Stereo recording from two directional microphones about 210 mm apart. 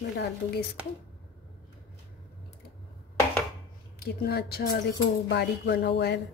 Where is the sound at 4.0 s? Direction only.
50° left (ahead or behind).